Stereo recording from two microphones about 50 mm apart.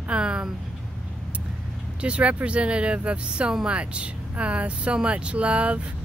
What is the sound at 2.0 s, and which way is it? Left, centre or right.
Speech, right.